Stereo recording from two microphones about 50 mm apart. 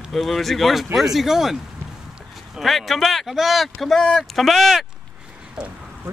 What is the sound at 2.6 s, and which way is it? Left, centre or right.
Speech, centre.